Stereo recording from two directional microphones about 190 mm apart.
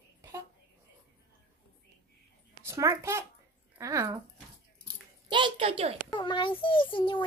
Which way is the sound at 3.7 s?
15° right (ahead or behind).